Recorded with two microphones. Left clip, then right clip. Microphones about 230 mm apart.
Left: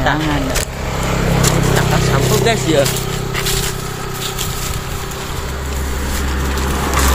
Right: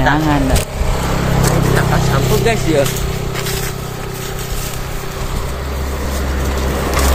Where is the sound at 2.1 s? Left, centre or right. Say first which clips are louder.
Left 1 dB; centre.